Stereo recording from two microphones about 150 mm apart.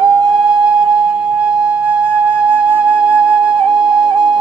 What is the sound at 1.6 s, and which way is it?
Flute, 10° right (ahead or behind).